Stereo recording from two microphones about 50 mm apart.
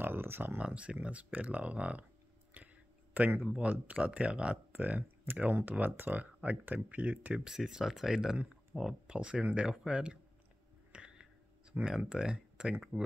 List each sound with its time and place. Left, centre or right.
0.0 s speech: right
0.6 s speech: right
3.2 s speech: right
7.4 s speech: centre
8.5 s a sound: centre
9.0 s speech: right
10.9 s a sound: centre
12.0 s speech: centre